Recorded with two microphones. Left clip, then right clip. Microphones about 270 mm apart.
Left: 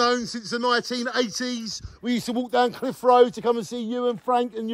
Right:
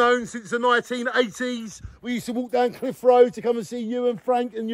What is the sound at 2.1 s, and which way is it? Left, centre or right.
A man's voice, left.